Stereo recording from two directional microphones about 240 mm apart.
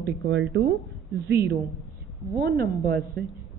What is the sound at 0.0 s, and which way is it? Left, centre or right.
A woman's voice, right.